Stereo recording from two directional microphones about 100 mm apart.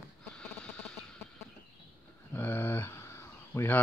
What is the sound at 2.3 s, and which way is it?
Speech, 20° left (ahead or behind).